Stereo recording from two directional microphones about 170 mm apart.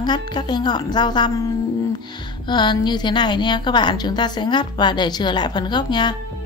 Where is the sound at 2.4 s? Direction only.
25° left (ahead or behind).